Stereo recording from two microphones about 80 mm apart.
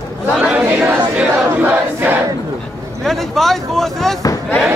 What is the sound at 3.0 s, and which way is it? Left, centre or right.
Speech, centre.